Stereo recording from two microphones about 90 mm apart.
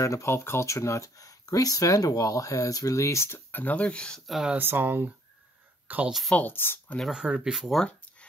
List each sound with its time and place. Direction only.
0.0 s speech: 35° left (ahead or behind); by 4.2 s 10° left (ahead or behind)
4.3 s speech: 5° right (ahead or behind)
4.6 s speech: 25° right (ahead or behind)
6.3 s speech: 20° left (ahead or behind)
7.1 s speech: 10° right (ahead or behind)
7.8 s a sound: 15° left (ahead or behind)